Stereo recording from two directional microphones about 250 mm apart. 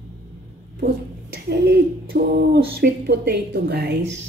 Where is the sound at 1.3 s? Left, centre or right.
Right.